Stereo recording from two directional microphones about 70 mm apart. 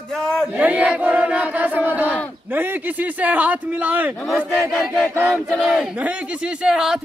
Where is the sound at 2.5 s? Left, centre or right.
Right.